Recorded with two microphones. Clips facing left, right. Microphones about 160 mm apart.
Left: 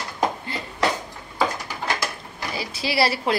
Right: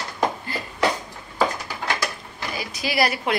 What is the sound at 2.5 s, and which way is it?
Speech, 30° left (ahead or behind).